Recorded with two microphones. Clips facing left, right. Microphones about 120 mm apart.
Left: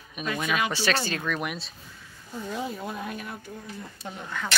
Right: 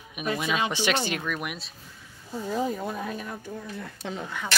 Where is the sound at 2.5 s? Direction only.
35° right (ahead or behind).